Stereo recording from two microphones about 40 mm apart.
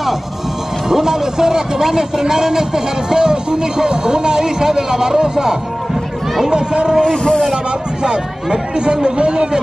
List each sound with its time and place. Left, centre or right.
0.8 s a man's voice: centre
7.1 s speech: centre
8.0 s speech: right